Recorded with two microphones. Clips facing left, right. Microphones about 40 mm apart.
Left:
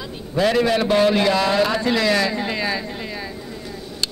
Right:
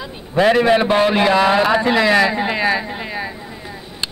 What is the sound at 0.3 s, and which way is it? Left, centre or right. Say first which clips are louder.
Speech: right 5 dB; right.